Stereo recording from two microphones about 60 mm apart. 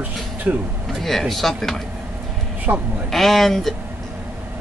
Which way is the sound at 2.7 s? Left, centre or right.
Right.